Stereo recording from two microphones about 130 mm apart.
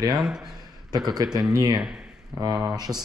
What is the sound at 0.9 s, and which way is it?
Speech, 30° right (ahead or behind).